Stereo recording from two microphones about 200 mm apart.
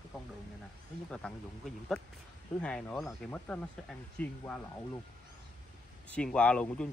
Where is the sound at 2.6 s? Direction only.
5° left (ahead or behind).